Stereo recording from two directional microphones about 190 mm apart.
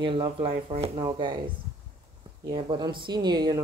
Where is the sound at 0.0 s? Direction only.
25° right (ahead or behind).